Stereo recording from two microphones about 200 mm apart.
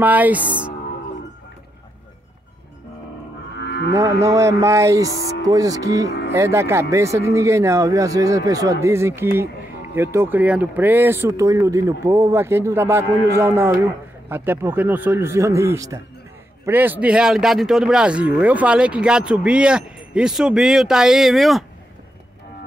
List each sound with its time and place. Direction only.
0.0 s speech: 10° right (ahead or behind)
3.5 s moo: 60° left (ahead or behind)
3.9 s speech: 15° right (ahead or behind)